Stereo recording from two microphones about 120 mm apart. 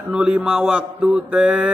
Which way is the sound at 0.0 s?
5° right (ahead or behind).